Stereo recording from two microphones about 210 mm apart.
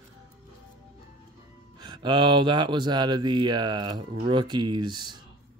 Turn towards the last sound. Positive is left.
turn(degrees=-20)  # may be behind; listen again after turning